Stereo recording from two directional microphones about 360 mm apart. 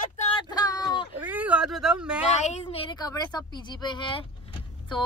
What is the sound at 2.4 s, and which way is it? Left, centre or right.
A woman's voice, centre.